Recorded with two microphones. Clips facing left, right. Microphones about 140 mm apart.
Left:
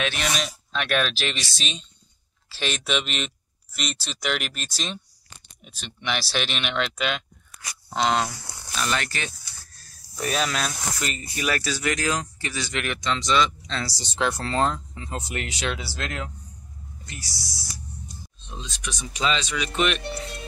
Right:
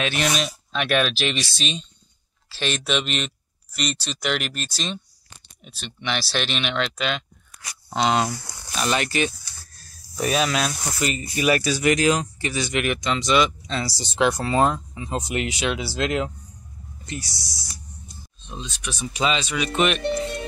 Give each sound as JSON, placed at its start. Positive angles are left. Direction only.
{"t": 0.0, "sound": "speech", "side_deg": 0}
{"t": 7.9, "sound": "speech", "side_deg": -5}
{"t": 8.7, "sound": "speech", "side_deg": -20}
{"t": 18.6, "sound": "speech", "side_deg": -5}